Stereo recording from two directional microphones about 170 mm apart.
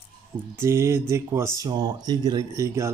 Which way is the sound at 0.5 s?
15° right (ahead or behind).